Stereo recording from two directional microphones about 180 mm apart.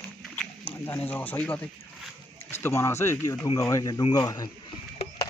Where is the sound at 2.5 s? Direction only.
15° left (ahead or behind).